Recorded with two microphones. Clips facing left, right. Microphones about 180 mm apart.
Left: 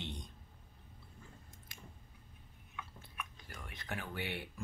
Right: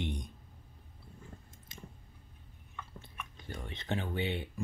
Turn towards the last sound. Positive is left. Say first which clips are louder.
# right 7 dB
turn(degrees=-20)  # may be behind; listen again after turning